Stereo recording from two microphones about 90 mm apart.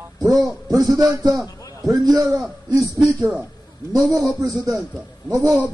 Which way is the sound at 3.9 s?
35° right (ahead or behind).